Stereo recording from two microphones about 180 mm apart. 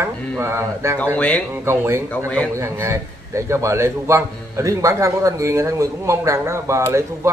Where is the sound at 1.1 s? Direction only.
10° left (ahead or behind).